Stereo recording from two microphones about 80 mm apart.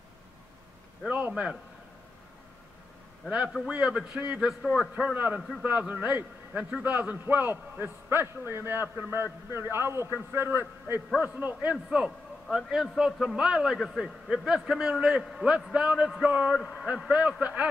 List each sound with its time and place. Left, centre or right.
1.0 s a man's voice: centre
3.6 s a man's voice: centre; by 11.0 s right
11.1 s a man's voice: centre
11.9 s a man's voice: centre
16.5 s a man's voice: centre
17.1 s a man's voice: centre